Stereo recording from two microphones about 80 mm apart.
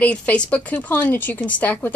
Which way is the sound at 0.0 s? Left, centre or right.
Centre.